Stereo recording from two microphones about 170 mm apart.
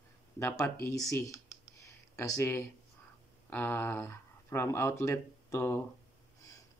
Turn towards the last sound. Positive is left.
turn(degrees=15)  # may be behind; listen again after turning